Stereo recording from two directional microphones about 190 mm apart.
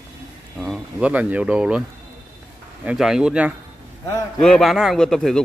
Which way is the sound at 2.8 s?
5° right (ahead or behind).